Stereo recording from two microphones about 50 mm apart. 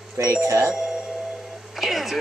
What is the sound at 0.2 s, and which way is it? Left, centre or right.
Speech, right.